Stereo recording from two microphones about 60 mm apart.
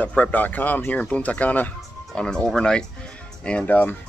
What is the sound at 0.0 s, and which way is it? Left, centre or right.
Speech, left.